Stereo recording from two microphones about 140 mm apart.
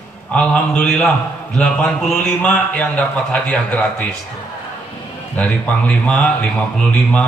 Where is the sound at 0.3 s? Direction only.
10° left (ahead or behind).